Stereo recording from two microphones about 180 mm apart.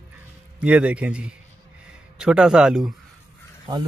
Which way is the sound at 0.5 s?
5° right (ahead or behind).